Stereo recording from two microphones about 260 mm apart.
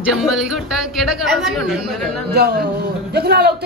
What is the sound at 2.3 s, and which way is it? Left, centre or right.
A man's voice, right.